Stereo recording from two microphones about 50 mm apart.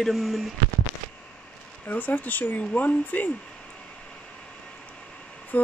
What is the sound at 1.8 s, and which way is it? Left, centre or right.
Speech, left.